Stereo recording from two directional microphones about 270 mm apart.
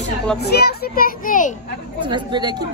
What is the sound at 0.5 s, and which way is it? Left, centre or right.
A child's voice, left.